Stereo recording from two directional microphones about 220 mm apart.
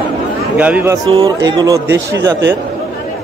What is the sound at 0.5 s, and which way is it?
A man's voice, 5° right (ahead or behind).